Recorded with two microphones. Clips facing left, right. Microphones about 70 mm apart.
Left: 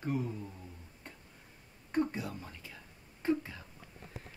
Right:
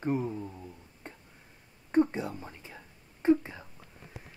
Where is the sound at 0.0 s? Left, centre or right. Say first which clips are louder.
Right 5 dB; right.